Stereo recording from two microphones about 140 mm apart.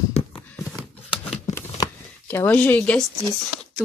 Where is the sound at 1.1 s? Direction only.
40° left (ahead or behind).